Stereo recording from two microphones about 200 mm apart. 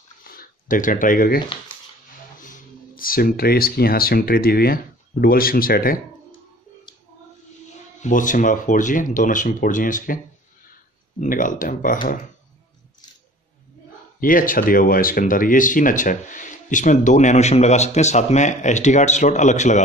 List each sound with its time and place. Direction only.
0.2 s a sound: 45° left (ahead or behind)
2.4 s speech: 45° left (ahead or behind)
8.0 s speech: 40° left (ahead or behind)
14.2 s speech: 45° left (ahead or behind)